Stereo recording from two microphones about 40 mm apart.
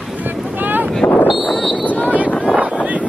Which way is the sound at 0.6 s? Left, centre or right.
Right.